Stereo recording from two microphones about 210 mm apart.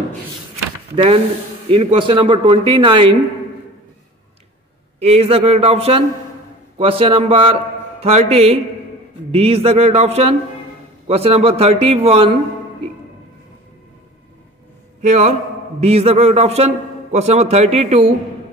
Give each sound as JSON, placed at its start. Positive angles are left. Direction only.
{"t": 0.9, "sound": "speech", "side_deg": -25}
{"t": 5.0, "sound": "speech", "side_deg": -30}
{"t": 15.0, "sound": "a man's voice", "side_deg": -35}